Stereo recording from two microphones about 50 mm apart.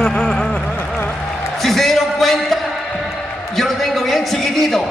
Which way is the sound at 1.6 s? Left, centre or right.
Centre.